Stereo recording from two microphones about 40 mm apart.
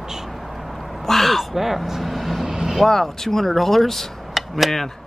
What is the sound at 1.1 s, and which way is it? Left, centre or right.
Speech, centre.